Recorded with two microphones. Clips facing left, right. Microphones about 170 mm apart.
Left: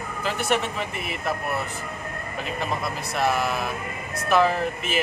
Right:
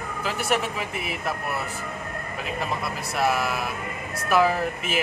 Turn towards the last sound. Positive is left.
turn(degrees=-5)  # may be behind; listen again after turning